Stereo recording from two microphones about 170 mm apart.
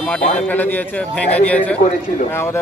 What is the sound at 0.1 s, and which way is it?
Speech, 10° left (ahead or behind).